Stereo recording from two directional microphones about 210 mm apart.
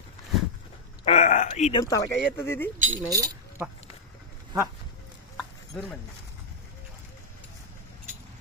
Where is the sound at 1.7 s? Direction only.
15° left (ahead or behind).